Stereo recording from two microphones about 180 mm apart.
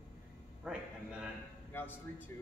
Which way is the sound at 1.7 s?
10° left (ahead or behind).